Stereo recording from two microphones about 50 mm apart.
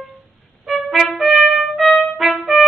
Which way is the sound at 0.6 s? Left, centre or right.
Centre.